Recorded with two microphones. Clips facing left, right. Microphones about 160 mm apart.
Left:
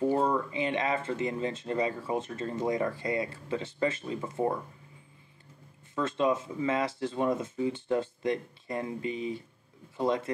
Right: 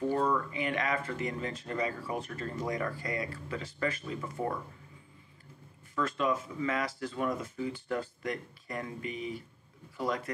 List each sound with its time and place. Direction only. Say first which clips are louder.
0.1 s speech: left 2 dB; 25° left (ahead or behind)
5.9 s speech: left 3 dB; 25° left (ahead or behind)